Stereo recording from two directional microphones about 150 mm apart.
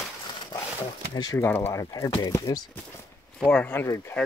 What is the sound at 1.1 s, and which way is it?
Speech, 25° left (ahead or behind).